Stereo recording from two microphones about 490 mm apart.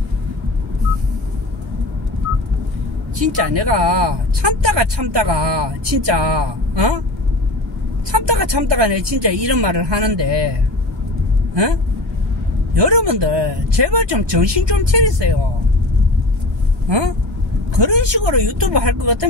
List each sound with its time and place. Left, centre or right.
3.3 s speech: right
8.1 s speech: right
11.5 s speech: right
17.7 s speech: right